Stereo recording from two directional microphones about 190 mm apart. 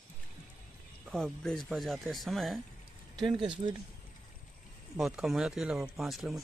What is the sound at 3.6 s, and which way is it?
Speech, 25° right (ahead or behind).